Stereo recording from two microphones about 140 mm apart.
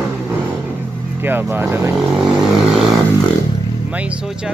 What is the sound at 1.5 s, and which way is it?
Speech, 15° right (ahead or behind).